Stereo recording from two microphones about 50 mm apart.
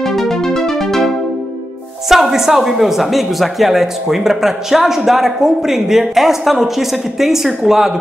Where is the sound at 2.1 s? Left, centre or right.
Centre.